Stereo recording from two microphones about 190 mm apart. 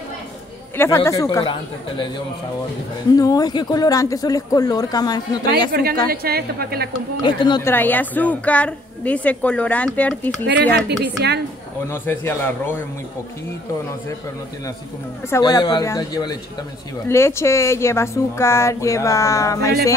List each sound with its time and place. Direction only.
0.7 s a woman's voice: 15° left (ahead or behind)
3.2 s speech: 20° left (ahead or behind)
5.7 s a woman's voice: 55° right (ahead or behind)
7.2 s speech: 25° left (ahead or behind)
7.6 s a woman's voice: 10° left (ahead or behind)
11.1 s a woman's voice: 60° right (ahead or behind)
11.9 s a woman's voice: 10° left (ahead or behind)
15.2 s a woman's voice: 15° left (ahead or behind)